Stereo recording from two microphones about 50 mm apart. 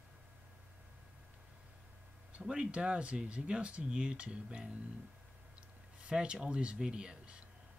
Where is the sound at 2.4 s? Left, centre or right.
Right.